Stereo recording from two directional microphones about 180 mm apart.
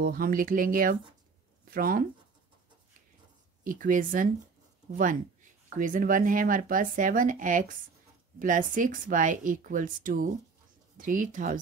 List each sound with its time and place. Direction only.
0.0 s speech: 55° right (ahead or behind)
3.6 s speech: 50° right (ahead or behind)